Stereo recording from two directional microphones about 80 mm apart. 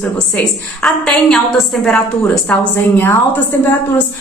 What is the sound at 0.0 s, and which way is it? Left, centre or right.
A woman's voice, centre.